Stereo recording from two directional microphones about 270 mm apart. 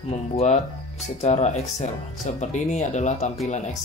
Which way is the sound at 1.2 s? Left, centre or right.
Left.